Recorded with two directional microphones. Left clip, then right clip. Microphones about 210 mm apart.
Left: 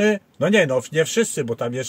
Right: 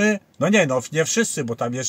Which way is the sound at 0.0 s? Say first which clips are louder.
Left 1 dB; 15° left (ahead or behind).